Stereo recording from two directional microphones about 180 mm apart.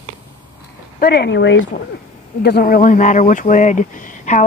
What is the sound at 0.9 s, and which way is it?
Speech, 65° left (ahead or behind).